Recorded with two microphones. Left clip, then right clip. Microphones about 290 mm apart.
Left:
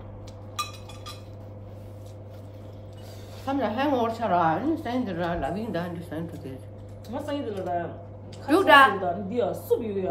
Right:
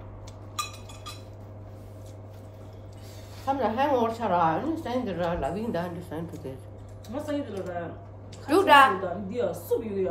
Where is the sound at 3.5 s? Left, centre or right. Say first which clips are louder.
Right 1 dB; centre.